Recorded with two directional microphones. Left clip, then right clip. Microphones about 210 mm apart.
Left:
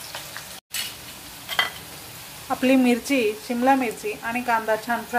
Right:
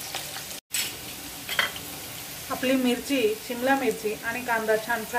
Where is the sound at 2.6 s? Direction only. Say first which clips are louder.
Left 5 dB; 40° left (ahead or behind).